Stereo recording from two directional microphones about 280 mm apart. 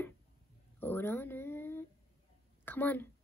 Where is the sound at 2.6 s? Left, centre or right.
Centre.